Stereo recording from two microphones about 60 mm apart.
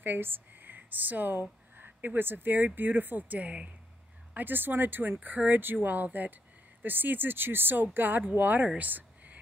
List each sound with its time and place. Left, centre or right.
0.0 s speech: right